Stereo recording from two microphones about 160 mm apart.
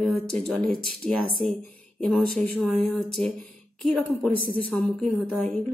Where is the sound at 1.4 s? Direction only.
45° right (ahead or behind).